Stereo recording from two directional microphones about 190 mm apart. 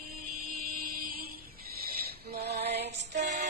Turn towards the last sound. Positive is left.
turn(degrees=-40)  # may be behind; listen again after turning